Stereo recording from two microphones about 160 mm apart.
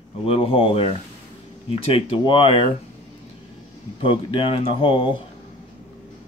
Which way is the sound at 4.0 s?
35° left (ahead or behind).